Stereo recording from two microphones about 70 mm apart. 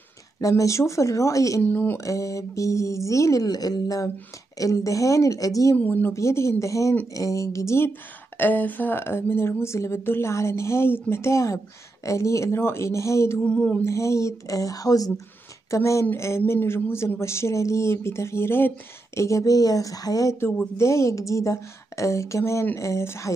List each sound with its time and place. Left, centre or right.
0.4 s a woman's voice: left
1.7 s a woman's voice: left
2.0 s a woman's voice: left
3.4 s a woman's voice: left
5.8 s a woman's voice: left
6.1 s a woman's voice: left
8.4 s a woman's voice: left
13.4 s a sound: centre
13.8 s a woman's voice: left
15.7 s a woman's voice: left
19.1 s speech: left
20.7 s a woman's voice: left